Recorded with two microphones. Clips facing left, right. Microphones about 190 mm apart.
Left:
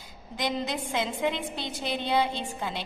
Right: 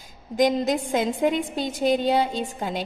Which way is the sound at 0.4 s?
45° right (ahead or behind).